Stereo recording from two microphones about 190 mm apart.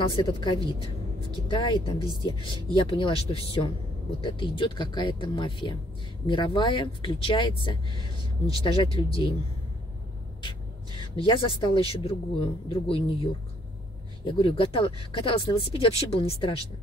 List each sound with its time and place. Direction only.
0.0 s speech: 25° left (ahead or behind)
11.0 s speech: 25° left (ahead or behind)